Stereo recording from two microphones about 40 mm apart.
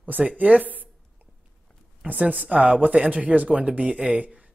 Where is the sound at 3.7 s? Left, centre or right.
Right.